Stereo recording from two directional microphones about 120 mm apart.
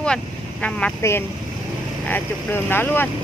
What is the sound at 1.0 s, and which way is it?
Speech, 25° left (ahead or behind).